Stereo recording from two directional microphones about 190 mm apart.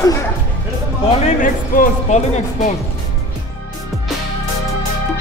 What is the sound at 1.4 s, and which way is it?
Speech, 45° left (ahead or behind).